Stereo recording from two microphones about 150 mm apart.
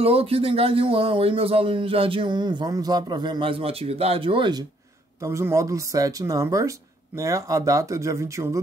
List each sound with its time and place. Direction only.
0.0 s a man's voice: 40° right (ahead or behind)
5.2 s speech: 20° right (ahead or behind)